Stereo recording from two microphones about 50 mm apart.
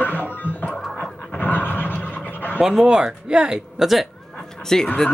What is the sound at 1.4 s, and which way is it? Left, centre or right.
Pant, left.